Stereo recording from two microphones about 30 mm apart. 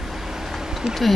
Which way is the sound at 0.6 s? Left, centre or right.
Centre.